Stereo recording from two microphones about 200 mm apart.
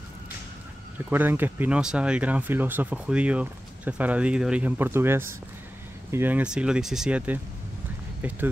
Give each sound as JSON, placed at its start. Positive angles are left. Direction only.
{"t": 1.1, "sound": "speech", "side_deg": -10}